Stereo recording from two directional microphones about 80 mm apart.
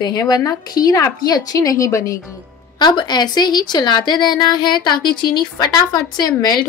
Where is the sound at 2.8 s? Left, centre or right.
Left.